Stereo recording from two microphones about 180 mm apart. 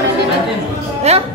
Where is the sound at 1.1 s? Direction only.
35° right (ahead or behind).